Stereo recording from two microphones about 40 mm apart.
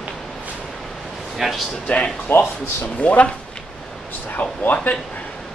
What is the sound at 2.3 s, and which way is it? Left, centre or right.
Speech, left.